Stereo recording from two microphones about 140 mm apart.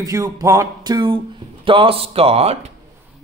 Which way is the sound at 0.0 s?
25° right (ahead or behind).